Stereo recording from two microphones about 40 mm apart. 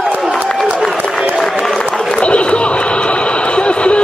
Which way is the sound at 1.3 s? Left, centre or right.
Centre.